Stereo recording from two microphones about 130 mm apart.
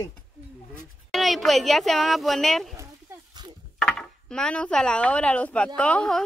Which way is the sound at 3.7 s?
5° left (ahead or behind).